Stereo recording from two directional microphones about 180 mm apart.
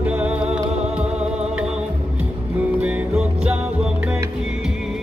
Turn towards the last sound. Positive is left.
turn(degrees=-5)  # may be behind; listen again after turning